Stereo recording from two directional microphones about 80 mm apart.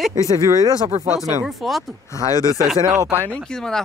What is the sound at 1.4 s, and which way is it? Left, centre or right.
Speech, centre.